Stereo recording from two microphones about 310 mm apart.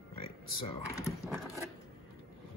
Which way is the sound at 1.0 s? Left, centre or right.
Centre.